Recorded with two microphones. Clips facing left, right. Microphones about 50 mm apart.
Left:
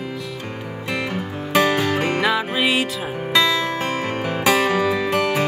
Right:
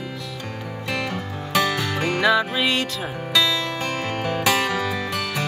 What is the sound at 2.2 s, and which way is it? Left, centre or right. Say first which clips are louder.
Music: even; centre.